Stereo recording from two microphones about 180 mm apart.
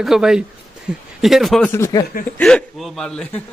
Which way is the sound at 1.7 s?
20° left (ahead or behind).